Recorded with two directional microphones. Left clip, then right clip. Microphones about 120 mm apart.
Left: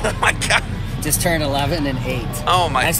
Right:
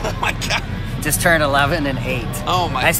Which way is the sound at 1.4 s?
15° right (ahead or behind).